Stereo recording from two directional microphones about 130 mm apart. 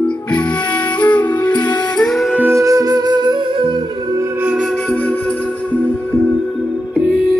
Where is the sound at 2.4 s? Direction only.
20° right (ahead or behind).